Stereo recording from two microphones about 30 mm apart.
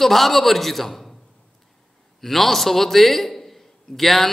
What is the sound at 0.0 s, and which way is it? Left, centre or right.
A man's voice, centre.